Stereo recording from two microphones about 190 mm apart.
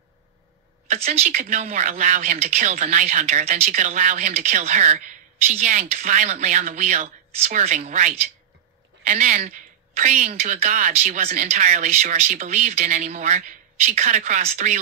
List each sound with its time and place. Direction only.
0.8 s a woman's voice: 35° right (ahead or behind)